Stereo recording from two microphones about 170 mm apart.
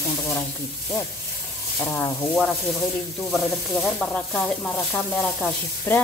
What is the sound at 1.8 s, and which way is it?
Sizzle, 15° left (ahead or behind).